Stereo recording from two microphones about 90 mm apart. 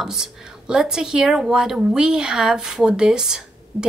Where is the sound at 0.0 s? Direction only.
5° right (ahead or behind).